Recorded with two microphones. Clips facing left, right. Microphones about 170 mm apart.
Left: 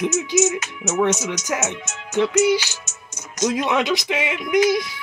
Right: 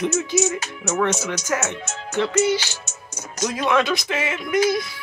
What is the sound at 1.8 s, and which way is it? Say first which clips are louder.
Speech: right 3 dB; 35° right (ahead or behind).